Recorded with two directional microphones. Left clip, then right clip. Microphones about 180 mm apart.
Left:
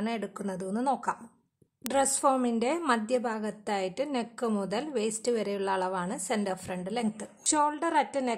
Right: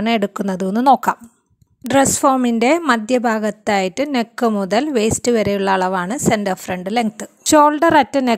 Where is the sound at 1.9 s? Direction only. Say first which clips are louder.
Right 12 dB; 35° right (ahead or behind).